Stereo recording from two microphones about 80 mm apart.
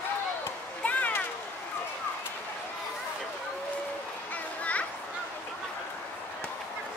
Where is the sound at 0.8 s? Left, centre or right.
Centre.